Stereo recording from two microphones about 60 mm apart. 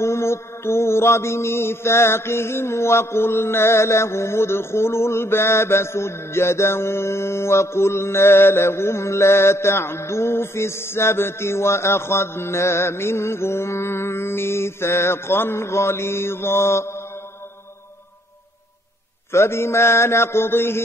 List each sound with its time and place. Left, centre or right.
0.0 s mantra: left
19.3 s mantra: left